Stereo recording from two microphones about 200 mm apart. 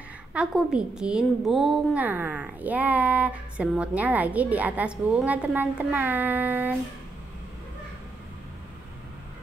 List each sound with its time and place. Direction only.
0.3 s a woman's voice: 5° right (ahead or behind)